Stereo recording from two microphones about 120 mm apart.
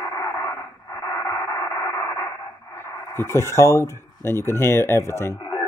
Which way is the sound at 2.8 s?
20° left (ahead or behind).